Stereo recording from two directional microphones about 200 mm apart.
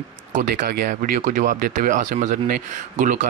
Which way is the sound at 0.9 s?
40° right (ahead or behind).